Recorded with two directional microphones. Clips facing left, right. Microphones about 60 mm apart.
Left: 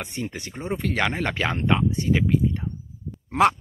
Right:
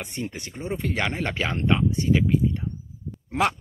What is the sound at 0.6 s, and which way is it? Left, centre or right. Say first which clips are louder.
Speech: even; left.